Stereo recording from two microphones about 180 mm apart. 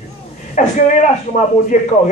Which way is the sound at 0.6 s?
45° left (ahead or behind).